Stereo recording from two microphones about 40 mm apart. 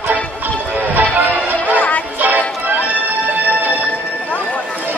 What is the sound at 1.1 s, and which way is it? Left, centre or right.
Music, right.